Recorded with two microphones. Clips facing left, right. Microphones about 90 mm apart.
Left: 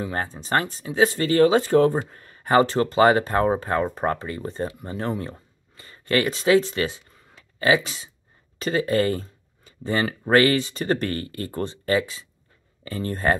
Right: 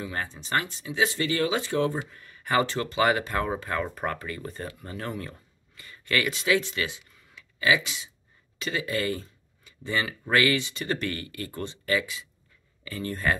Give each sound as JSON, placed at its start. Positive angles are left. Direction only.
{"t": 0.0, "sound": "speech", "side_deg": 35}